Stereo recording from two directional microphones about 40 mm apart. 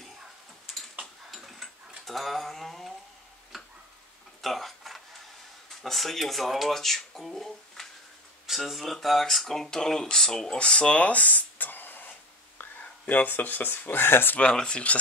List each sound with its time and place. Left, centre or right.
1.3 s tick-tock: centre
2.0 s speech: centre
3.5 s tick-tock: centre
4.4 s a sound: centre
5.8 s speech: centre
8.5 s speech: centre
10.6 s speech: left
13.1 s speech: left
14.5 s speech: centre